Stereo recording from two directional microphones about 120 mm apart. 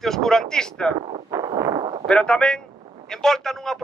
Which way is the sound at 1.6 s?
40° right (ahead or behind).